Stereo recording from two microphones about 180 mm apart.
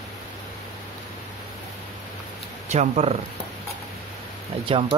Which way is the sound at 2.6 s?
40° right (ahead or behind).